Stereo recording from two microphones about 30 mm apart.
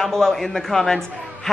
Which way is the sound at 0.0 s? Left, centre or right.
Centre.